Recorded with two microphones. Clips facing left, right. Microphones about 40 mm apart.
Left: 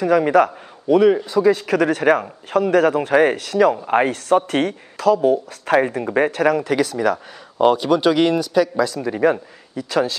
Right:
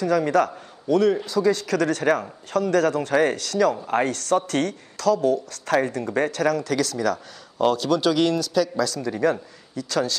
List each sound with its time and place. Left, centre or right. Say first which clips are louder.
0.0 s speech: left 5 dB; centre